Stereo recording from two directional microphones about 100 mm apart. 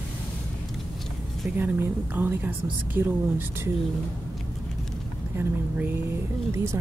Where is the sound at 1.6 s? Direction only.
20° right (ahead or behind).